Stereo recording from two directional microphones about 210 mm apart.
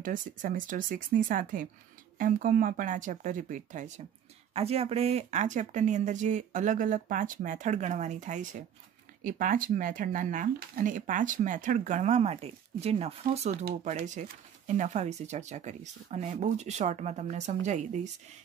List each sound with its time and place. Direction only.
0.0 s speech: 40° right (ahead or behind)